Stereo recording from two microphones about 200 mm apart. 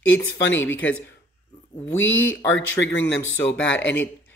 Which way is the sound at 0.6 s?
10° left (ahead or behind).